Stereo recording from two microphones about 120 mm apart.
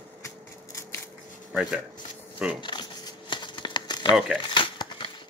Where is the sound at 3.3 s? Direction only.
40° left (ahead or behind).